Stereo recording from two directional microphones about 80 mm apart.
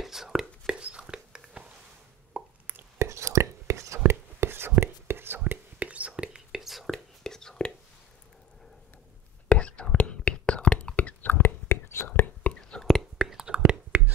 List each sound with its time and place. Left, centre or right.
0.0 s whispering: centre
2.3 s a sound: right
3.0 s whispering: right
4.0 s whispering: right
5.4 s whispering: centre
9.5 s whispering: centre
12.5 s whispering: centre
12.8 s whispering: centre